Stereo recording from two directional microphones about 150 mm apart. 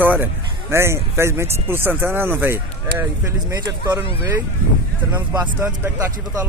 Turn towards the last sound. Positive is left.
turn(degrees=-20)  # may be behind; listen again after turning